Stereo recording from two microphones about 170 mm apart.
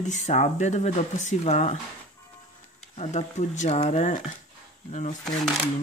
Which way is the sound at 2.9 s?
40° left (ahead or behind).